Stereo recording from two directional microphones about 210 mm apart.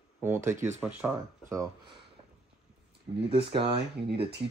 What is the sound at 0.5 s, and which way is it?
Speech, 35° right (ahead or behind).